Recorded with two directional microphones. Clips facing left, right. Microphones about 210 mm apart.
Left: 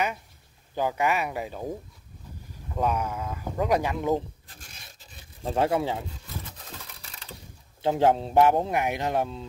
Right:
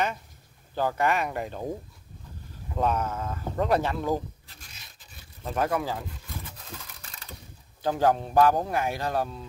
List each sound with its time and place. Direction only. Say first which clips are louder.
0.7 s speech: even; 10° left (ahead or behind)
2.8 s speech: even; 10° left (ahead or behind)
5.4 s speech: left 3 dB; 30° left (ahead or behind)
7.8 s speech: left 2 dB; 25° left (ahead or behind)